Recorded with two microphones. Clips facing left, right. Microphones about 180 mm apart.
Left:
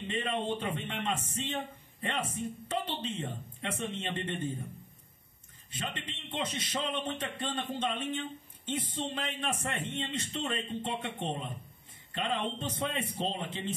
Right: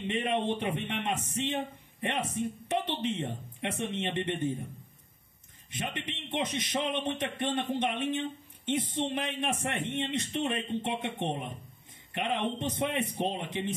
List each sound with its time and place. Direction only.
0.1 s a man's voice: 20° right (ahead or behind)
5.8 s a man's voice: 15° right (ahead or behind)